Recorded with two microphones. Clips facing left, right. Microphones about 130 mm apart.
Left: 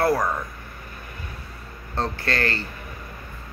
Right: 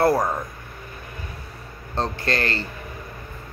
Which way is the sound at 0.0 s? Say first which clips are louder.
Right 2 dB; 30° right (ahead or behind).